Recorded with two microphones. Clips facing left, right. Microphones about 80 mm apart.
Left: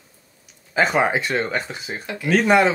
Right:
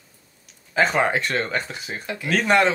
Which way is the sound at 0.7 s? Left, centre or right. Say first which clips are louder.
Left 1 dB; centre.